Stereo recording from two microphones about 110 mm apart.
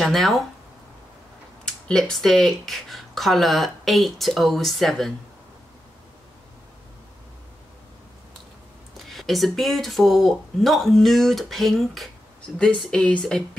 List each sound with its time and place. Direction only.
0.0 s speech: centre (ahead or behind)
1.9 s speech: 5° left (ahead or behind)
8.9 s speech: centre (ahead or behind)